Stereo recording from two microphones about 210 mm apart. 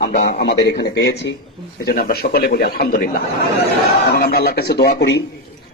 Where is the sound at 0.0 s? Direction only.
45° left (ahead or behind).